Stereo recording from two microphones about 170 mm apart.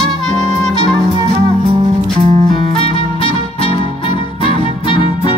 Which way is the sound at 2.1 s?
35° right (ahead or behind).